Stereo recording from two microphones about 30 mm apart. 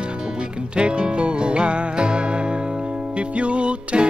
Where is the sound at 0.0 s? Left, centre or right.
Right.